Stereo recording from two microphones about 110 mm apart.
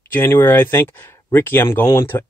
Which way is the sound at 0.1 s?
20° left (ahead or behind).